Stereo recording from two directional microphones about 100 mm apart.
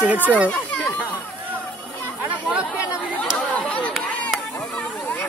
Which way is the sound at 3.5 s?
10° left (ahead or behind).